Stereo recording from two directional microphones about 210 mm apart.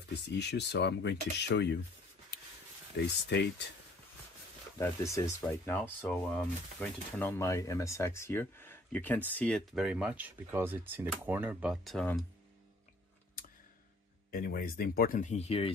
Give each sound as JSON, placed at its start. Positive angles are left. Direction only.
{"t": 0.1, "sound": "speech", "side_deg": 55}
{"t": 2.9, "sound": "speech", "side_deg": 55}
{"t": 4.7, "sound": "speech", "side_deg": 15}
{"t": 14.3, "sound": "speech", "side_deg": 45}